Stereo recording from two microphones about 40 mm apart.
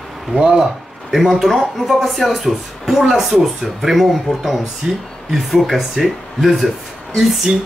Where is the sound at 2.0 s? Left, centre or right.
Centre.